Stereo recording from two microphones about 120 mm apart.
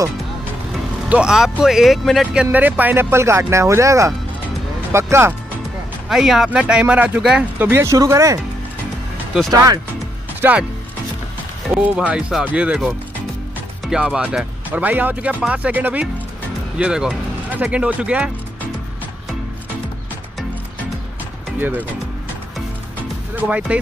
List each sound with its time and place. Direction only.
1.0 s speech: 10° right (ahead or behind)
2.5 s speech: 15° right (ahead or behind)
6.0 s speech: 5° right (ahead or behind)
7.5 s speech: 20° right (ahead or behind)
9.5 s speech: 30° right (ahead or behind)
10.4 s speech: 20° right (ahead or behind)
11.8 s speech: 10° right (ahead or behind)
21.5 s speech: 15° right (ahead or behind)
23.3 s speech: 10° right (ahead or behind)